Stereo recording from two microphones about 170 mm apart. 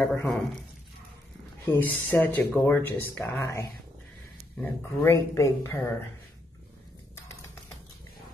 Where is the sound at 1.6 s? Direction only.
10° left (ahead or behind).